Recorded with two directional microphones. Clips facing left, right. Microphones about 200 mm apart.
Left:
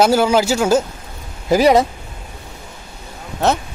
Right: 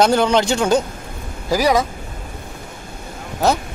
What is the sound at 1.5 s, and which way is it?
Speech, 25° left (ahead or behind).